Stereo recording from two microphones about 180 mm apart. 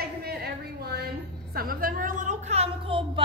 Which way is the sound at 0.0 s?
60° right (ahead or behind).